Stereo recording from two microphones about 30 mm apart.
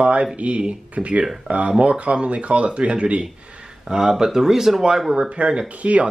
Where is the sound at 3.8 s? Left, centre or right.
Right.